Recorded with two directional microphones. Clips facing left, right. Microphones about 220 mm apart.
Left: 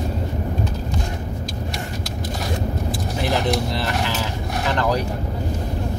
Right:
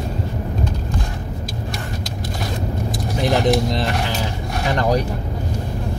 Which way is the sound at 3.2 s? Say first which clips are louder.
Right 5 dB; 15° right (ahead or behind).